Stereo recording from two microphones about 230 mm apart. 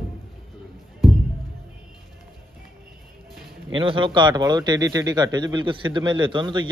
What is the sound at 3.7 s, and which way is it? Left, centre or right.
A man's voice, right.